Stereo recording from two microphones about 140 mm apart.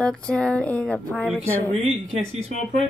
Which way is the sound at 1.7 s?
45° right (ahead or behind).